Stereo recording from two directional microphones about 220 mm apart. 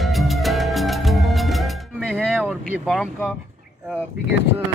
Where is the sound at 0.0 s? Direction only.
Centre (ahead or behind).